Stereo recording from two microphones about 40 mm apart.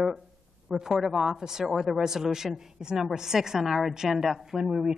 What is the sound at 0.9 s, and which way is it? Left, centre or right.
Speech, centre.